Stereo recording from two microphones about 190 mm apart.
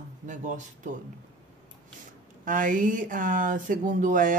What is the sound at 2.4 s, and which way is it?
Speech, 45° right (ahead or behind).